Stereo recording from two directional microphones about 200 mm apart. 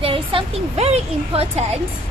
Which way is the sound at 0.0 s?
25° right (ahead or behind).